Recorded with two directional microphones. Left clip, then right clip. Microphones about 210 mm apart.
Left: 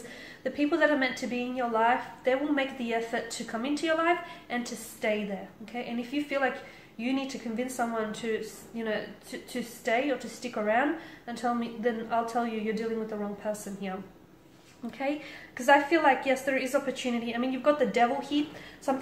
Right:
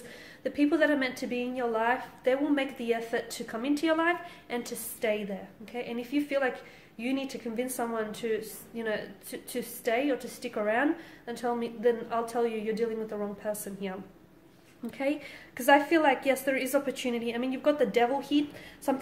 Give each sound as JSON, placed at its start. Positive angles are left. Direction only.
{"t": 0.4, "sound": "a woman's voice", "side_deg": -45}